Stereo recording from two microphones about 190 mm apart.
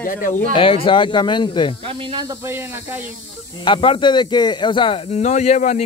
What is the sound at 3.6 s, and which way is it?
Speech, 25° left (ahead or behind).